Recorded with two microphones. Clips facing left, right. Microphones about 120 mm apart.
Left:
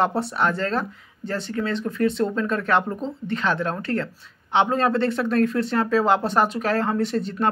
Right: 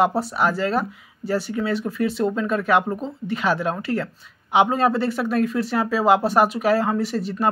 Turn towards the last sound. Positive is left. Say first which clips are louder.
# even
turn(degrees=-5)  # may be behind; listen again after turning